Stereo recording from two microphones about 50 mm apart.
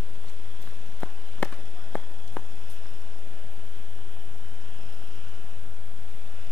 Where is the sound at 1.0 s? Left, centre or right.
Centre.